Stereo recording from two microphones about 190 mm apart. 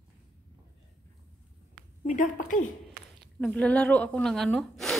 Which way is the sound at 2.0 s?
45° left (ahead or behind).